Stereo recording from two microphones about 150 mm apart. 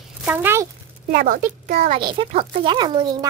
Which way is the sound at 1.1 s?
65° right (ahead or behind).